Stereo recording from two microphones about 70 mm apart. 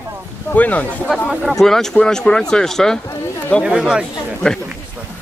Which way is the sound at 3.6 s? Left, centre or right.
Centre.